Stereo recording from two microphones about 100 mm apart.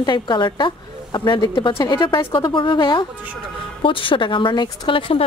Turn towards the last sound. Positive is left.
turn(degrees=60)  # may be behind; listen again after turning